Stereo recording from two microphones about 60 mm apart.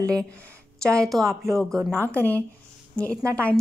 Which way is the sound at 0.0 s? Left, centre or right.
Centre.